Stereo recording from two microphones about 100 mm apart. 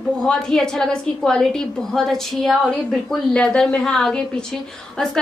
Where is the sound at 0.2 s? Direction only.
5° left (ahead or behind).